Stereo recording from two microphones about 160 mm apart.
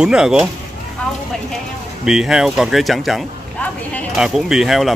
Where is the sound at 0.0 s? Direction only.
5° right (ahead or behind).